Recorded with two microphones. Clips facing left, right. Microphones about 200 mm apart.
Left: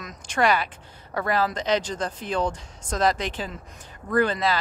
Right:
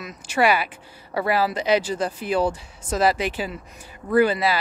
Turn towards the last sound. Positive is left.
turn(degrees=-10)  # may be behind; listen again after turning